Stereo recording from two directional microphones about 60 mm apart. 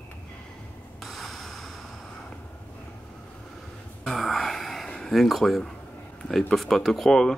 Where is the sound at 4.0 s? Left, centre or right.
Centre.